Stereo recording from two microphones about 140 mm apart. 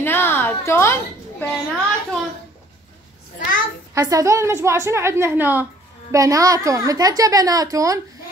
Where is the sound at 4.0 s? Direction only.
25° right (ahead or behind).